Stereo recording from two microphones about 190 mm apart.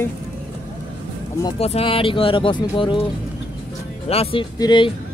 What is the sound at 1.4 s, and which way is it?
Speech, 30° left (ahead or behind).